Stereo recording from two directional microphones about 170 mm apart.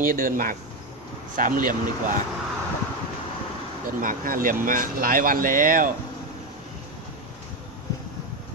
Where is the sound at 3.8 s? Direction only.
55° right (ahead or behind).